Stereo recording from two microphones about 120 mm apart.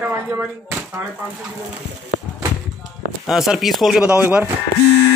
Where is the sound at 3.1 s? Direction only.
Centre (ahead or behind).